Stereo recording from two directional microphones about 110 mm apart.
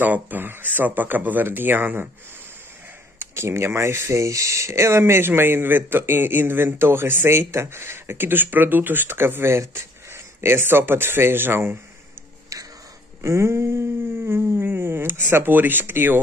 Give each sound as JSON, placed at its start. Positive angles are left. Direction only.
{"t": 0.0, "sound": "speech", "side_deg": -15}
{"t": 3.2, "sound": "speech", "side_deg": -25}
{"t": 13.2, "sound": "a sound", "side_deg": -25}
{"t": 15.2, "sound": "speech", "side_deg": -20}